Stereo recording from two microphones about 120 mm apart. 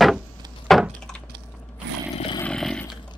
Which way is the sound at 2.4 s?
5° left (ahead or behind).